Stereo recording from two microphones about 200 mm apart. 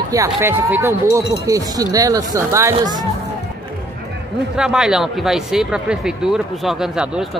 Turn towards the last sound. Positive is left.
turn(degrees=-5)  # may be behind; listen again after turning